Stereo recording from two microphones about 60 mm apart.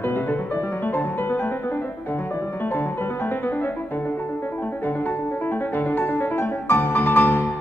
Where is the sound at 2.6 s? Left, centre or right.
Left.